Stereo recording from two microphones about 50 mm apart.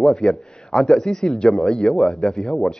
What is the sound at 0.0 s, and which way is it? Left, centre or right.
A man's voice, centre.